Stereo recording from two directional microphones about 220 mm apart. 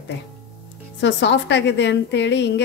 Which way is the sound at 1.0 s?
55° left (ahead or behind).